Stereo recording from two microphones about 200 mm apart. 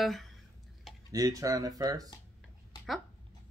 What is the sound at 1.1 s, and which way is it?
Speech, 15° right (ahead or behind).